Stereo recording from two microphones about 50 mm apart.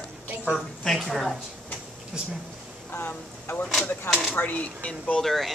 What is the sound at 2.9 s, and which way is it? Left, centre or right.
Speech, left.